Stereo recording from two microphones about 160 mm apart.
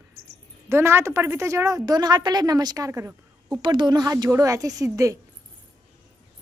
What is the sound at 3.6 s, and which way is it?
A woman's voice, 30° right (ahead or behind).